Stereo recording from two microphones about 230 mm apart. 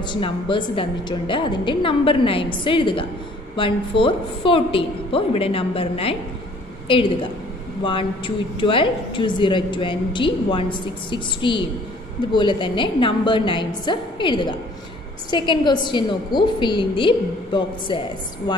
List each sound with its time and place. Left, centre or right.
0.0 s a woman's voice: left